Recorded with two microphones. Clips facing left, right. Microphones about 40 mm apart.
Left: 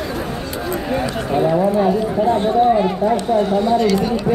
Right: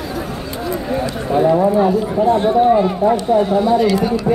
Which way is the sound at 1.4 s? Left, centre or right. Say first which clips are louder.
Right 3 dB; centre.